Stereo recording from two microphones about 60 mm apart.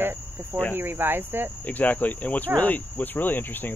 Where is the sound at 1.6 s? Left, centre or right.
Left.